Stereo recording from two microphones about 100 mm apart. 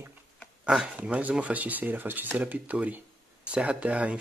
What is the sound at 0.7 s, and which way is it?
Speech, 10° right (ahead or behind).